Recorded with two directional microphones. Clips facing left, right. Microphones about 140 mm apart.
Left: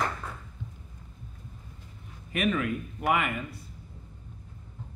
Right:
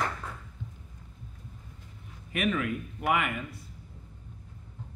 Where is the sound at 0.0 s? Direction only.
30° left (ahead or behind).